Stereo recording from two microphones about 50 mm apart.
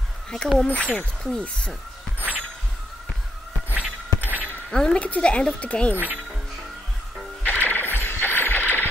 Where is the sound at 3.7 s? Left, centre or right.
Right.